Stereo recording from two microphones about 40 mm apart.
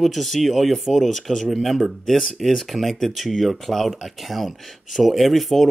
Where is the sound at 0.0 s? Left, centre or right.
Centre.